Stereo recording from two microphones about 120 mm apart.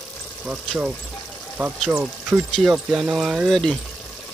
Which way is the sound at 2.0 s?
5° right (ahead or behind).